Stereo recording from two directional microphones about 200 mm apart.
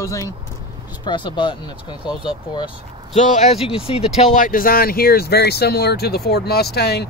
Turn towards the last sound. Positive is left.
turn(degrees=55)  # may be behind; listen again after turning